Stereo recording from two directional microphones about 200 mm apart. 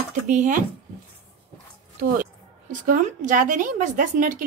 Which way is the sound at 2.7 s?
40° right (ahead or behind).